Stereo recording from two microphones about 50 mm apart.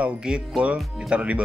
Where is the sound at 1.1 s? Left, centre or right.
Right.